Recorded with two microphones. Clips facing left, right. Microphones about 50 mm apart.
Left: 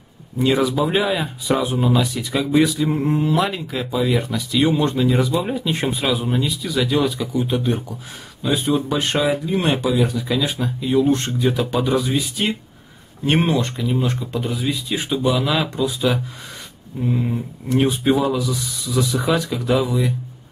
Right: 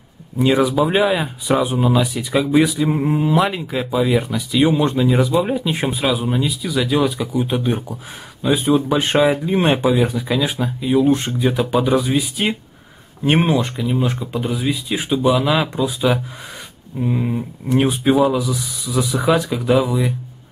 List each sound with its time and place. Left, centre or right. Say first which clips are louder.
0.4 s speech: right 3 dB; centre
9.0 s speech: right 4 dB; right